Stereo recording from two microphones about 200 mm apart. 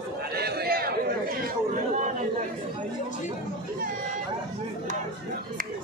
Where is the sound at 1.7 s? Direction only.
40° right (ahead or behind).